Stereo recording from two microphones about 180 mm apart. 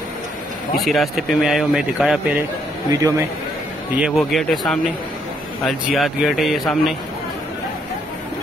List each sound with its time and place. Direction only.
0.7 s speech: centre (ahead or behind)
3.0 s a man's voice: 15° right (ahead or behind)
3.9 s speech: centre (ahead or behind)